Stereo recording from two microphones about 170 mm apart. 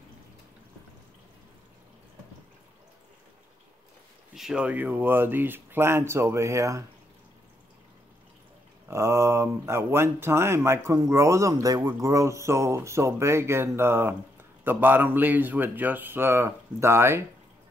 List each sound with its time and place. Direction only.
4.4 s speech: 5° right (ahead or behind)
8.8 s speech: 15° right (ahead or behind)